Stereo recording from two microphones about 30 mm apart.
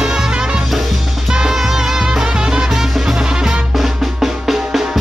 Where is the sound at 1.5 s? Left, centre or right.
Centre.